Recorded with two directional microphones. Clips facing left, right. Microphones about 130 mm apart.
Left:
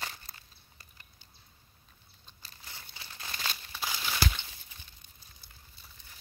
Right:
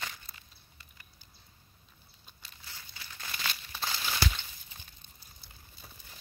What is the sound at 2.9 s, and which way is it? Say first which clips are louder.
Crumpling: even; 25° left (ahead or behind).